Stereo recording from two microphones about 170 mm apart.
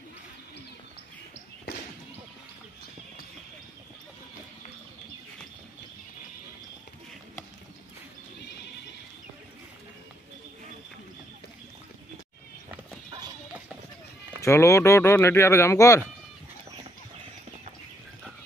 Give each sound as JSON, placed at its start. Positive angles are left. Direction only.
{"t": 14.4, "sound": "speech", "side_deg": 15}